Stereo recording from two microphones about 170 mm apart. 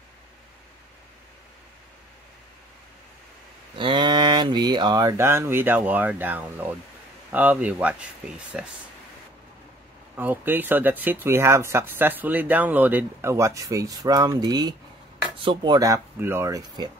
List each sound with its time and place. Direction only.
3.7 s speech: 30° right (ahead or behind); by 8.6 s 5° right (ahead or behind)
10.1 s speech: 10° right (ahead or behind)